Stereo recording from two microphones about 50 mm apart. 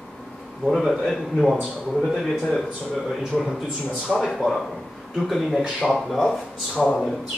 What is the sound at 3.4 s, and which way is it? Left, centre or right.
A man's voice, centre.